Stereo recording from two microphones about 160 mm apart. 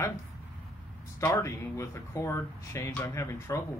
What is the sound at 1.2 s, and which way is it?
Speech, 15° left (ahead or behind).